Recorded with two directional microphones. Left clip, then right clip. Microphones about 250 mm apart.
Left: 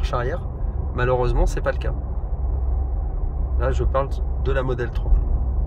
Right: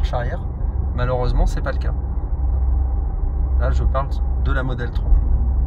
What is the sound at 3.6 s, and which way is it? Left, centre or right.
Speech, centre.